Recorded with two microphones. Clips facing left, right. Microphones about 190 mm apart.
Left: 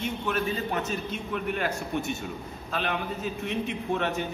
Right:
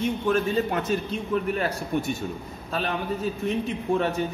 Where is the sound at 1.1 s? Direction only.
35° right (ahead or behind).